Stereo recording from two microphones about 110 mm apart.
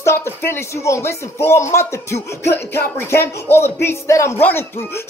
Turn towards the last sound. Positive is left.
turn(degrees=25)  # may be behind; listen again after turning